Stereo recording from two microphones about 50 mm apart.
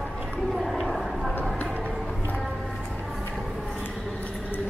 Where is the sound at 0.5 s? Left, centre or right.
Centre.